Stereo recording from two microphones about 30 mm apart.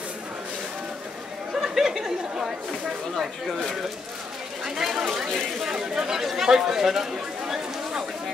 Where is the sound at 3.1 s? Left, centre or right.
Centre.